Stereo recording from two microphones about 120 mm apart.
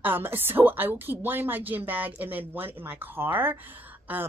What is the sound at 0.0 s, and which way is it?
Speech, 15° right (ahead or behind).